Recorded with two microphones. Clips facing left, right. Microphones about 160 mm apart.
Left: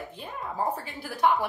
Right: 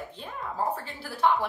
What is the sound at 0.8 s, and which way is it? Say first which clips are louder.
Speech: left 1 dB; 15° left (ahead or behind).